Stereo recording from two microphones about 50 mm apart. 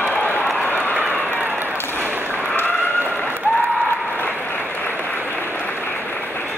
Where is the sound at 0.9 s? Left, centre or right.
Right.